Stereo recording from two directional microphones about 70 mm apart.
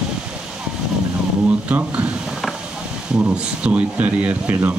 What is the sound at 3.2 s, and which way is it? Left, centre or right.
Speech, centre.